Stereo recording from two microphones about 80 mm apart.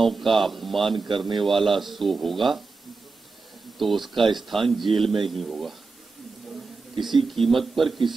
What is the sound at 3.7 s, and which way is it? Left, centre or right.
Speech, centre.